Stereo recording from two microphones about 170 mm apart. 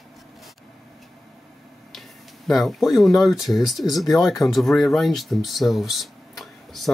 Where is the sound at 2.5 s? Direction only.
Centre (ahead or behind).